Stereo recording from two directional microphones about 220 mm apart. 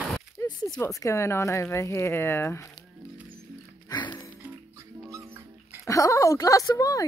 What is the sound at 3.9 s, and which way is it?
Music, 20° left (ahead or behind).